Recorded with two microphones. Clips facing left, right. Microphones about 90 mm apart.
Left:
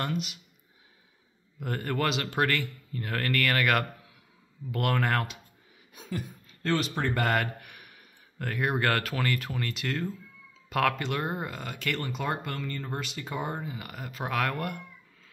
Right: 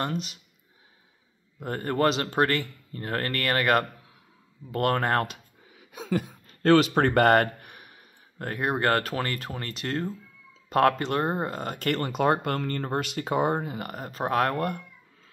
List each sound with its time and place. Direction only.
0.0 s speech: 30° right (ahead or behind)
1.6 s speech: 30° right (ahead or behind)
5.8 s speech: 90° right; by 7.4 s 55° right (ahead or behind)
7.6 s speech: 30° right (ahead or behind)